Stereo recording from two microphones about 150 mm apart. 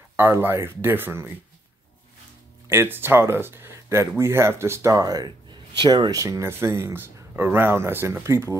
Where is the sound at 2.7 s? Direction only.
15° right (ahead or behind).